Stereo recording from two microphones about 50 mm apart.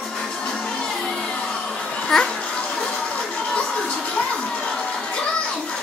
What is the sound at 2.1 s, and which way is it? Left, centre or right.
Children playing, centre.